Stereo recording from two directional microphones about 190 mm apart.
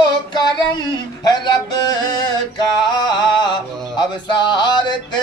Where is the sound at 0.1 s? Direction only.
25° left (ahead or behind).